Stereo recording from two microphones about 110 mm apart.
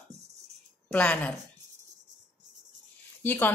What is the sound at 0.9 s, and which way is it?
Speech, 15° left (ahead or behind).